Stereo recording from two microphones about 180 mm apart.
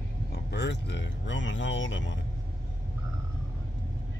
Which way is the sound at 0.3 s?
70° left (ahead or behind).